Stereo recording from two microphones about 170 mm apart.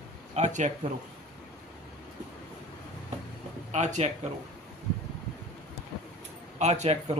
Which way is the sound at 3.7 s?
45° right (ahead or behind).